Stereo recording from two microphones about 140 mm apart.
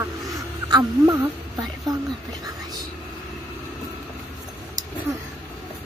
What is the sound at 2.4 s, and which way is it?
Whispering, 30° right (ahead or behind).